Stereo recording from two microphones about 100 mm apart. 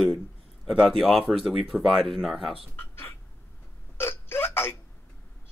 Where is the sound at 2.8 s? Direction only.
25° left (ahead or behind).